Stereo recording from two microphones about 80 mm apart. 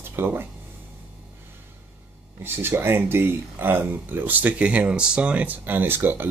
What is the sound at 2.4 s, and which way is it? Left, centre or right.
Speech, right.